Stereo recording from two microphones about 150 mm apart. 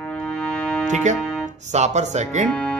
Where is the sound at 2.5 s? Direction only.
10° left (ahead or behind).